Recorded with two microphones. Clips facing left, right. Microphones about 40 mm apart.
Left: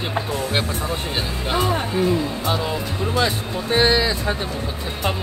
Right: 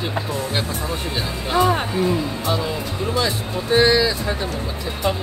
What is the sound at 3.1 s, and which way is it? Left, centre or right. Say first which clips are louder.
Speech: left 2 dB; left.